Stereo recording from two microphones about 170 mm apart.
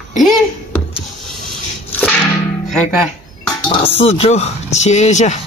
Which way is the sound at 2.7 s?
Centre (ahead or behind).